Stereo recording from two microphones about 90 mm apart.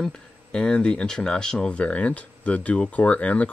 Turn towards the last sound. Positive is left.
turn(degrees=15)  # may be behind; listen again after turning